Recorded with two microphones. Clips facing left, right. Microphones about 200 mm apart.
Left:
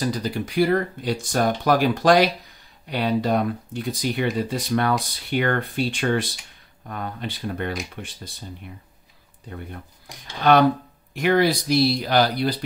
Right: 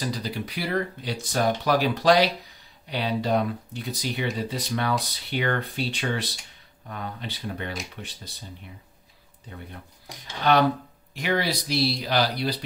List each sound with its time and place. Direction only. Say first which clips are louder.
0.0 s speech: left 5 dB; 50° left (ahead or behind)
11.1 s speech: left 7 dB; 50° left (ahead or behind)